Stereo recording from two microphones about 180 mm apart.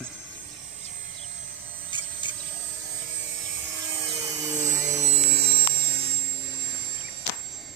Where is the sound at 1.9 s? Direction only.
25° left (ahead or behind).